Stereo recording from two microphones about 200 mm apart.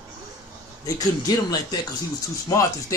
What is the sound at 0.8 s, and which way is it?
A man's voice, 15° left (ahead or behind).